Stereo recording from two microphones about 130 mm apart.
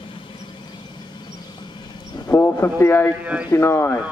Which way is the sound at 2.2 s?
20° left (ahead or behind).